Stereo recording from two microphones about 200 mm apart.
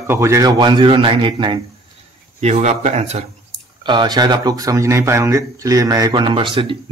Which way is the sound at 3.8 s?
25° right (ahead or behind).